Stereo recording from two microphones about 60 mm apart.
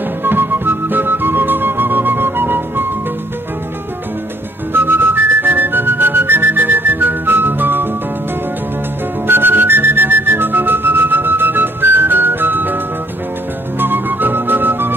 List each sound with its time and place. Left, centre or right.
0.2 s music: right
4.7 s whistling: right
9.3 s whistling: right
13.7 s music: right